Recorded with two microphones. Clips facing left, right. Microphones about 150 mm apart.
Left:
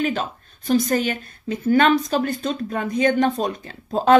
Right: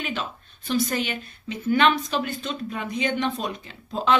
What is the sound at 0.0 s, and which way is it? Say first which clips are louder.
A woman's voice: left 7 dB; 40° left (ahead or behind).